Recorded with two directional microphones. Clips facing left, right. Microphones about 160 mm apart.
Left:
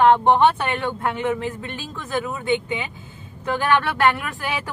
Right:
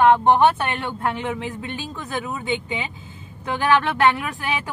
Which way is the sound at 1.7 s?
15° right (ahead or behind).